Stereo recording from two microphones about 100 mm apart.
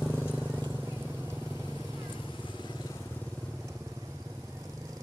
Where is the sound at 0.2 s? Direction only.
15° right (ahead or behind).